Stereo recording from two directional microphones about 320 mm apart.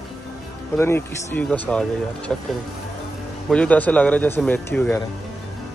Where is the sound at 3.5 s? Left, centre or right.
Centre.